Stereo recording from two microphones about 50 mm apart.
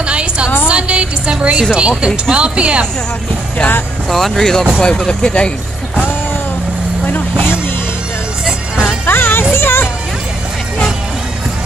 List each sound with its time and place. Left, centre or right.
0.0 s music: right
0.7 s speech: right
4.1 s speech: centre
8.5 s music: centre
9.0 s music: left